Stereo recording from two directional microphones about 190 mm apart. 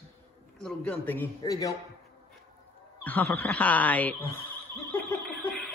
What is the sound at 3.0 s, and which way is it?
Speech, 10° left (ahead or behind).